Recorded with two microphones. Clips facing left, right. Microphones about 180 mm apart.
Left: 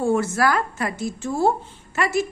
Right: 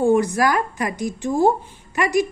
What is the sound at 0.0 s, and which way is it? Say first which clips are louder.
A woman's voice: right 3 dB; 15° right (ahead or behind).